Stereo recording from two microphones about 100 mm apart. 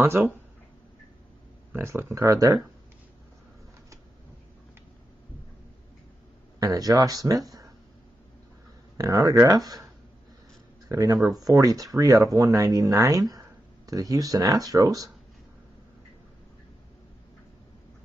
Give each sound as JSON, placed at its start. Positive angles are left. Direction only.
{"t": 0.0, "sound": "speech", "side_deg": -20}
{"t": 1.7, "sound": "speech", "side_deg": -25}
{"t": 6.6, "sound": "speech", "side_deg": -40}
{"t": 8.9, "sound": "speech", "side_deg": -40}
{"t": 10.9, "sound": "speech", "side_deg": -35}